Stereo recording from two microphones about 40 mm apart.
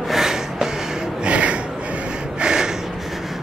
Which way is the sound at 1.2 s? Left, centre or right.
Right.